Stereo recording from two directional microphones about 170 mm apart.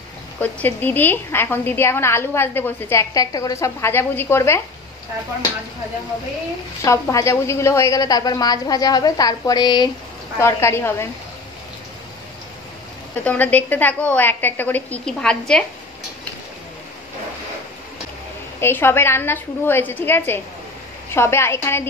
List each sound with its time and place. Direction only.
0.4 s a woman's voice: 10° left (ahead or behind)
6.8 s a woman's voice: 20° left (ahead or behind)
13.2 s a woman's voice: 10° left (ahead or behind)
18.6 s a woman's voice: 15° left (ahead or behind)